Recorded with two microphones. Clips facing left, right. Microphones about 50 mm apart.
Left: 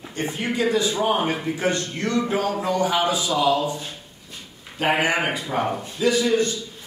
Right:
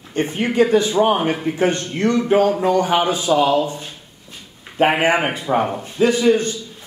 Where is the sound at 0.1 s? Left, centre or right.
Right.